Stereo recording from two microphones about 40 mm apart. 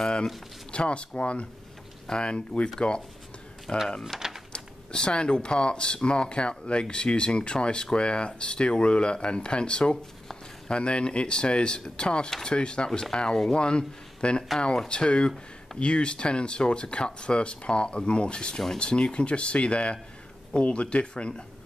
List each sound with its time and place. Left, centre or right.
0.7 s speech: left
4.1 s speech: centre
4.5 s speech: left